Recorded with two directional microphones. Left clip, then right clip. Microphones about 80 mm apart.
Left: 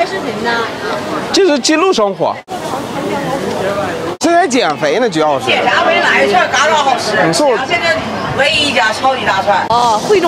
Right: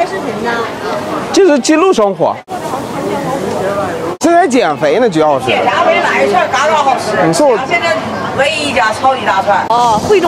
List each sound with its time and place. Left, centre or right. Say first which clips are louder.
1.3 s speech: right 2 dB; centre
4.2 s speech: right 2 dB; centre
5.5 s speech: right 1 dB; left